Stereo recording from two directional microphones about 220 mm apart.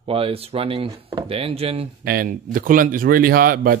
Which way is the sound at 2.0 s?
40° right (ahead or behind).